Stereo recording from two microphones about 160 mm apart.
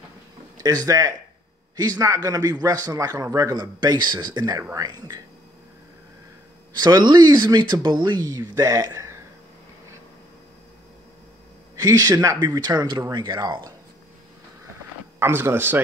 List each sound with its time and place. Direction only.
0.8 s a man's voice: 20° right (ahead or behind)
6.8 s a man's voice: 25° right (ahead or behind)
11.7 s a man's voice: 20° right (ahead or behind)
15.1 s speech: 15° right (ahead or behind)